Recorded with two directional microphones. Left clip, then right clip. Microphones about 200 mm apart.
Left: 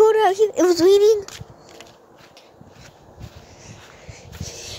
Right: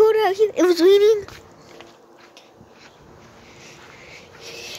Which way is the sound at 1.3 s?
50° left (ahead or behind).